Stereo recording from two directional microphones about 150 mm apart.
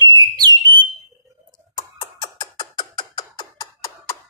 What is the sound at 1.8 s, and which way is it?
Beatboxing, 30° left (ahead or behind).